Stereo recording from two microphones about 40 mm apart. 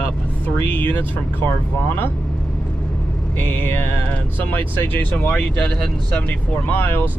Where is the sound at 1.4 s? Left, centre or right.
Left.